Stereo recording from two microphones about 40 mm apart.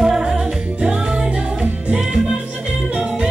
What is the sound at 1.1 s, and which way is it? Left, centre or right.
Music, right.